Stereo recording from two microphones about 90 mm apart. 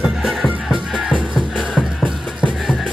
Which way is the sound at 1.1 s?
15° left (ahead or behind).